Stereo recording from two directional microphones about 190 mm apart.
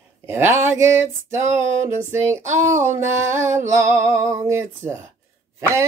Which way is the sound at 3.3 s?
40° right (ahead or behind).